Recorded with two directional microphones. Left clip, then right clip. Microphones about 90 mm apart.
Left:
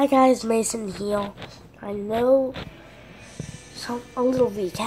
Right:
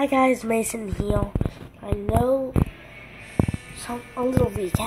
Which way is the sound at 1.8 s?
30° left (ahead or behind).